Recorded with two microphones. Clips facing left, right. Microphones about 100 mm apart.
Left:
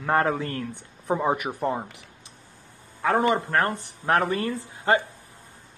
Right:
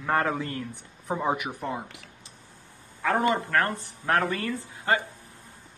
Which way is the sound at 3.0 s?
20° left (ahead or behind).